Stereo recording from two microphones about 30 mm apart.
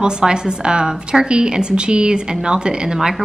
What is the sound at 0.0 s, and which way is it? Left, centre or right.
A woman's voice, right.